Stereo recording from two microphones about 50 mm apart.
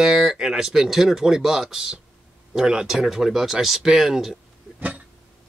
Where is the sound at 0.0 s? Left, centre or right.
Centre.